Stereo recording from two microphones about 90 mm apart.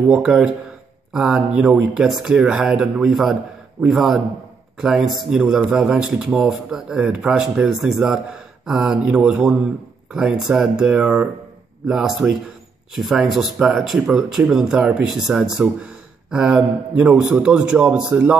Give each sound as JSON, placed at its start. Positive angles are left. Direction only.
{"t": 0.1, "sound": "speech", "side_deg": -10}